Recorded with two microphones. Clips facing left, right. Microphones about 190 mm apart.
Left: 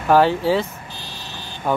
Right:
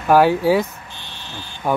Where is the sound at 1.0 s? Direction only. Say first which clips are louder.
Even; 35° left (ahead or behind).